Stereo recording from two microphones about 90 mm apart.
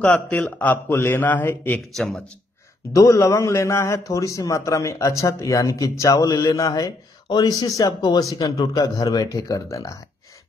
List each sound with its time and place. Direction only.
0.0 s a man's voice: 15° left (ahead or behind)
2.0 s speech: 5° left (ahead or behind)
2.9 s a man's voice: 35° left (ahead or behind)